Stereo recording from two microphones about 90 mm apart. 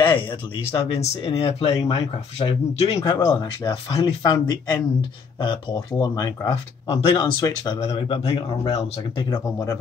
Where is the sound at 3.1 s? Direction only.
40° left (ahead or behind).